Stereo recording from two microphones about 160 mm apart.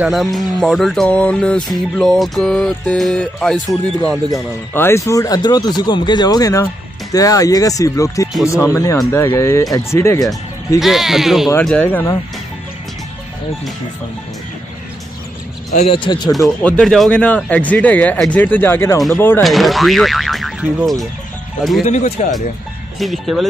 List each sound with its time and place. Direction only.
0.0 s music: centre (ahead or behind)
4.3 s speech: 15° left (ahead or behind)
10.8 s music: centre (ahead or behind)
11.6 s speech: 10° left (ahead or behind)
15.7 s speech: 45° left (ahead or behind)
16.0 s speech: 25° left (ahead or behind)
16.3 s music: centre (ahead or behind)
16.6 s speech: 5° left (ahead or behind)
19.4 s music: centre (ahead or behind)
21.8 s speech: 45° left (ahead or behind)
22.9 s music: centre (ahead or behind)